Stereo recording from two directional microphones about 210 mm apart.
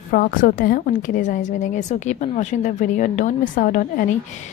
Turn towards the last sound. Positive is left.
turn(degrees=40)  # may be behind; listen again after turning